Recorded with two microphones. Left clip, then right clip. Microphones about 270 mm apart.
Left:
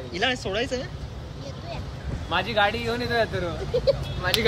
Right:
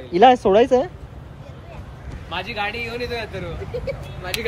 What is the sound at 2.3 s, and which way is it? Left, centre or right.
Speech, left.